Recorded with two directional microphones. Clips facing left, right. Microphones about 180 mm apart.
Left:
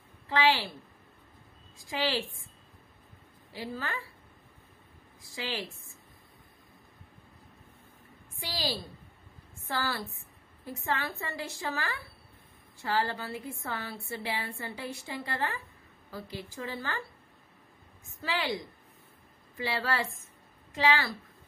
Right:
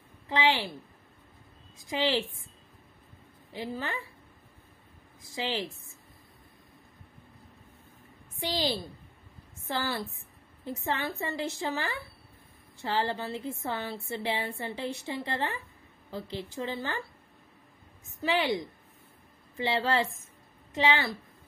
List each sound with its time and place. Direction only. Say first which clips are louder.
0.3 s a woman's voice: even; 20° right (ahead or behind)
1.8 s a woman's voice: right 3 dB; 20° right (ahead or behind)
3.5 s a woman's voice: right 2 dB; 20° right (ahead or behind)
5.2 s a woman's voice: right 4 dB; 20° right (ahead or behind)
8.4 s a woman's voice: right 4 dB; 20° right (ahead or behind)
18.2 s a woman's voice: right 5 dB; 20° right (ahead or behind)